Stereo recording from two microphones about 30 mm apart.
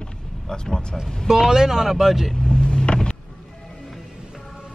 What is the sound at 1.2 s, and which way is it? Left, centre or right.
Speech, centre.